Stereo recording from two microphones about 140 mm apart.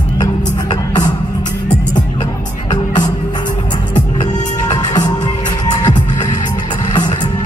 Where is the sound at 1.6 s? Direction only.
65° left (ahead or behind).